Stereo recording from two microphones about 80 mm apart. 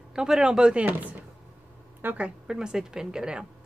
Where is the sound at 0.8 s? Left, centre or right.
Right.